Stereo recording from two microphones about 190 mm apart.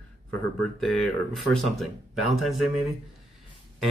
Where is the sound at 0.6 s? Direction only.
Centre (ahead or behind).